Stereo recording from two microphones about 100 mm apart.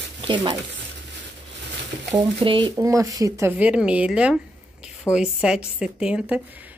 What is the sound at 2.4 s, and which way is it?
Speech, 55° right (ahead or behind).